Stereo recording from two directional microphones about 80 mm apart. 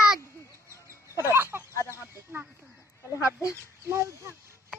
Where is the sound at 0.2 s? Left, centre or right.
Left.